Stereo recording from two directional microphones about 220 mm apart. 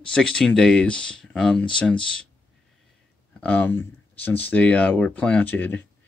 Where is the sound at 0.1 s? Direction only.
5° left (ahead or behind).